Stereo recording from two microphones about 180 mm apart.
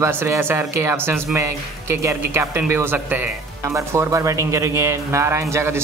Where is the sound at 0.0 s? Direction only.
15° right (ahead or behind).